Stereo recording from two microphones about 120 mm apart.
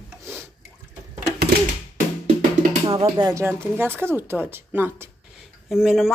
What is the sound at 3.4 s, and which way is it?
Speech, 20° right (ahead or behind).